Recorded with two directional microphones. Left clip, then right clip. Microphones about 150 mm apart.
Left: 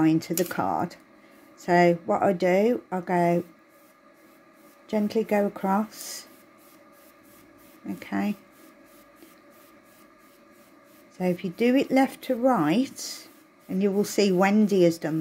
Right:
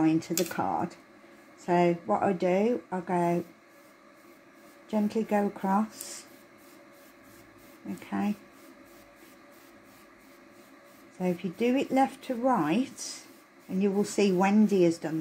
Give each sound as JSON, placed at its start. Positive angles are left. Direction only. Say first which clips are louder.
{"t": 0.0, "sound": "speech", "louder": "left 3 dB", "side_deg": 40}
{"t": 4.8, "sound": "speech", "louder": "left 4 dB", "side_deg": 55}
{"t": 8.0, "sound": "speech", "louder": "left 3 dB", "side_deg": 50}
{"t": 11.1, "sound": "speech", "louder": "left 4 dB", "side_deg": 50}